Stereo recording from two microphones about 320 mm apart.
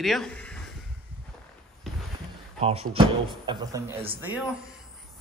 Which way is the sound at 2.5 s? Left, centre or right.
Centre.